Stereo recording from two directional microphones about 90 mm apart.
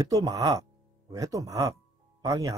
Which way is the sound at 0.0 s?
40° right (ahead or behind).